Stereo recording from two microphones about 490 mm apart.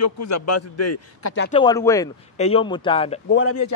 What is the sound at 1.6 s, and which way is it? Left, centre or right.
Speech, centre.